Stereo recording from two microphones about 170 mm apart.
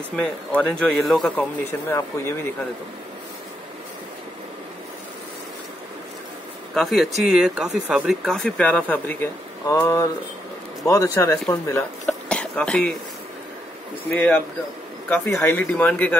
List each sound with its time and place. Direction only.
0.1 s speech: 5° left (ahead or behind)
1.9 s speech: 15° left (ahead or behind)
6.7 s speech: centre (ahead or behind)
14.0 s speech: 10° left (ahead or behind)